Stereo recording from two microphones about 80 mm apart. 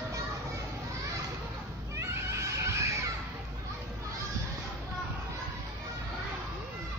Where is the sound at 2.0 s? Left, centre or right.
Right.